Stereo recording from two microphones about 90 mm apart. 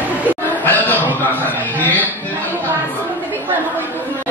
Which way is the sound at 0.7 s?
20° left (ahead or behind).